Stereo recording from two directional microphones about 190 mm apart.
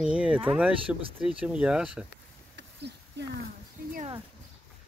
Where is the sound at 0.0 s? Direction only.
5° right (ahead or behind).